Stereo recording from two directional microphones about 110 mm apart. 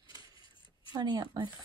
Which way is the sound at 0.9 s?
40° right (ahead or behind).